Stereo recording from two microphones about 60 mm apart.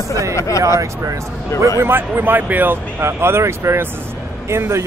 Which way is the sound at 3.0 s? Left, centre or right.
Right.